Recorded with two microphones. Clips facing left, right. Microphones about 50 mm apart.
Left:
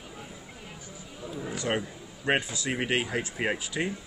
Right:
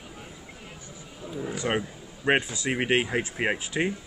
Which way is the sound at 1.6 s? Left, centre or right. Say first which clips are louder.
Right 2 dB; centre.